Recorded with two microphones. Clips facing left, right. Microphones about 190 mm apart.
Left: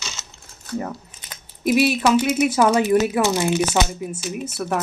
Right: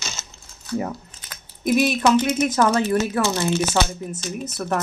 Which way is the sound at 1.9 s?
10° left (ahead or behind).